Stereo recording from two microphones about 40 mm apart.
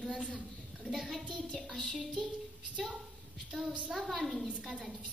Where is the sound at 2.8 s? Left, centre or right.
Centre.